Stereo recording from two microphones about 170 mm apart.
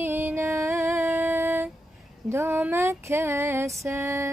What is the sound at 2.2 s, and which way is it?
Female singing, 15° right (ahead or behind).